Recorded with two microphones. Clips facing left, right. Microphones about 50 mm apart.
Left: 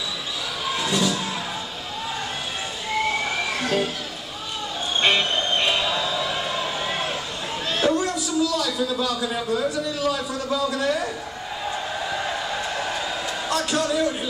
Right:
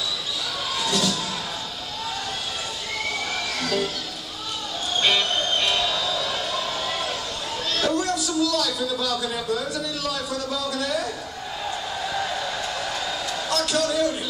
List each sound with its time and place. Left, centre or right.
0.7 s music: left
3.1 s music: left
5.0 s music: left
7.7 s a man's voice: left
12.8 s a sound: left